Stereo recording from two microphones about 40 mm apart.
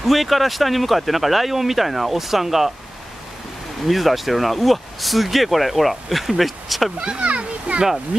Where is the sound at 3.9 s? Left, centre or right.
Centre.